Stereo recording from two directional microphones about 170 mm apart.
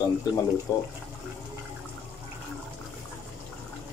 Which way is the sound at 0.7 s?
20° left (ahead or behind).